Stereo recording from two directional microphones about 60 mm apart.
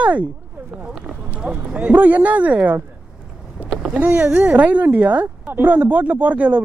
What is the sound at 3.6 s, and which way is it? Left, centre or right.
Vehicle, right.